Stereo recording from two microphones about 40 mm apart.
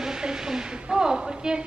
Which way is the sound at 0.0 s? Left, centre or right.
Centre.